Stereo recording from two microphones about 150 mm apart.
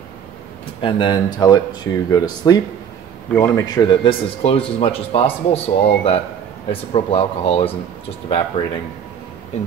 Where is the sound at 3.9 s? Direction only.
35° left (ahead or behind).